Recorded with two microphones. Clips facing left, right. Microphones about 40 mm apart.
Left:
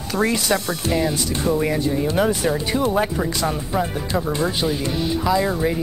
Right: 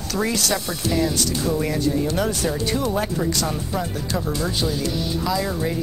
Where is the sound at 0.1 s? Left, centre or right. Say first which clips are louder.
Left 3 dB; left.